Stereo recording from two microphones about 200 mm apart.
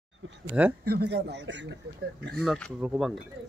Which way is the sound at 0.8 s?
55° right (ahead or behind).